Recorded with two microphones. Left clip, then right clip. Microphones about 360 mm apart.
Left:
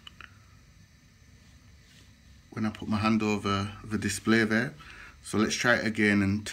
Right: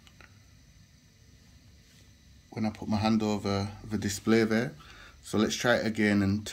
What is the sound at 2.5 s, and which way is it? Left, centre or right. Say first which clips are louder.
Speech: even; centre.